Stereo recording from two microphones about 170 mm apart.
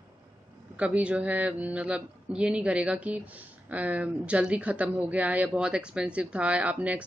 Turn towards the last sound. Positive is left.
turn(degrees=-10)  # may be behind; listen again after turning